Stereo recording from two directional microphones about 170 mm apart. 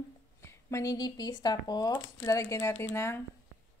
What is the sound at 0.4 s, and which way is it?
Speech, 15° left (ahead or behind).